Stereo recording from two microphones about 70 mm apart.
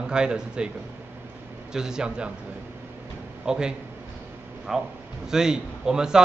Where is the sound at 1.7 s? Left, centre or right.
Centre.